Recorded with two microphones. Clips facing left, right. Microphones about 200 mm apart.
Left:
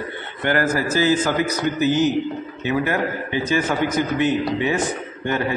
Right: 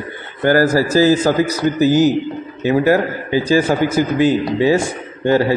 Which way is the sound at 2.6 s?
35° right (ahead or behind).